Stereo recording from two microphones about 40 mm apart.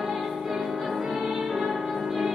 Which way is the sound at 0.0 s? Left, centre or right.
Centre.